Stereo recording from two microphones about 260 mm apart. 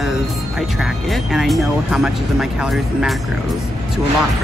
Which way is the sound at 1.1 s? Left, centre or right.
Centre.